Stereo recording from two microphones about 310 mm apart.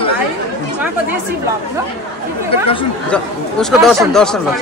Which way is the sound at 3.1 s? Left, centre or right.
Centre.